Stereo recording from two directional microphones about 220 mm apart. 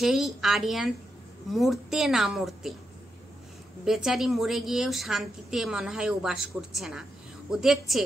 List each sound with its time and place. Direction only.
0.0 s a woman's voice: centre (ahead or behind)
3.8 s a woman's voice: centre (ahead or behind)